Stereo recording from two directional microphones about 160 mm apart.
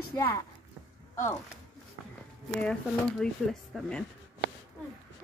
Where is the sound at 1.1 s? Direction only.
15° left (ahead or behind).